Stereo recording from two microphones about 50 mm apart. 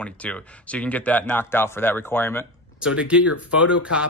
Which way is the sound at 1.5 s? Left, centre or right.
Left.